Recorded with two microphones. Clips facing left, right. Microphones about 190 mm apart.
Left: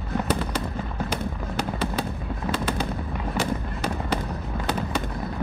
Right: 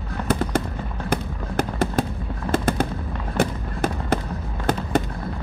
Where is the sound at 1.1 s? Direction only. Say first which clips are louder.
Right 3 dB; 45° right (ahead or behind).